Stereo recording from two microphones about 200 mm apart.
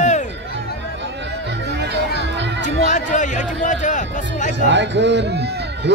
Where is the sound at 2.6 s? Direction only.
40° left (ahead or behind).